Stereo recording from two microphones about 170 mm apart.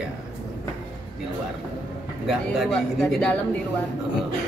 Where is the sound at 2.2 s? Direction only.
Centre (ahead or behind).